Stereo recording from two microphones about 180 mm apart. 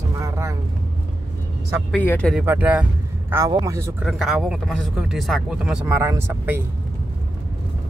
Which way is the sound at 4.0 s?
Centre (ahead or behind).